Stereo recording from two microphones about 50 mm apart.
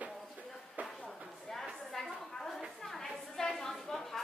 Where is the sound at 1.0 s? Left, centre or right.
Centre.